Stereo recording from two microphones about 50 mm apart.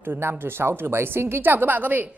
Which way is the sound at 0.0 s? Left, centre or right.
Right.